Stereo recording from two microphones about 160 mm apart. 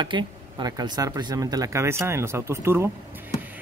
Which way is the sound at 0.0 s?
30° right (ahead or behind).